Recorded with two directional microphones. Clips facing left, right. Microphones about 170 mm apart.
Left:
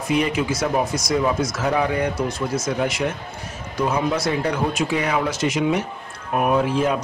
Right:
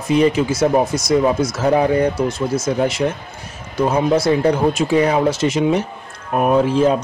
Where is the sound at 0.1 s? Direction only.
30° right (ahead or behind).